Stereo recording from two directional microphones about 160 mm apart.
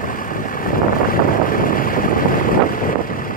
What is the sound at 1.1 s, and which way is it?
Boat, 60° left (ahead or behind).